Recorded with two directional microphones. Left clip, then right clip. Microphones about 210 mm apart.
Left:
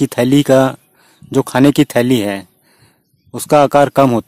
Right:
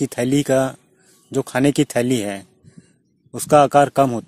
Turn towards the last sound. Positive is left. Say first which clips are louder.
# left 4 dB
turn(degrees=35)  # may be behind; listen again after turning